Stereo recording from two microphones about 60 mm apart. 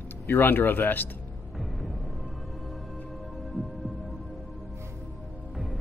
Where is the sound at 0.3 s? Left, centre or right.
Left.